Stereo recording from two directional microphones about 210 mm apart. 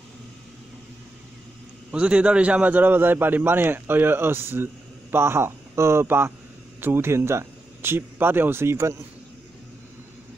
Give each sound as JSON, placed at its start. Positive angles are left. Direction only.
{"t": 1.9, "sound": "a man's voice", "side_deg": -5}